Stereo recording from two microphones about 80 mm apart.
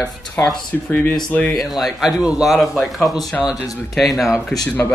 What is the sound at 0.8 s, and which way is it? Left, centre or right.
Speech, left.